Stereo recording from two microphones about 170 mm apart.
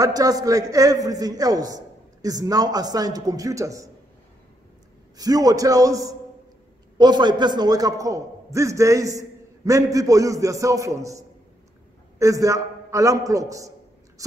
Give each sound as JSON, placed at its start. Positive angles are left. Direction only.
{"t": 0.0, "sound": "a man's voice", "side_deg": -20}
{"t": 5.1, "sound": "a man's voice", "side_deg": -20}